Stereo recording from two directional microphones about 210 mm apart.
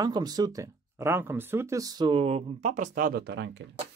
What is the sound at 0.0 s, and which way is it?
Speech, 20° right (ahead or behind).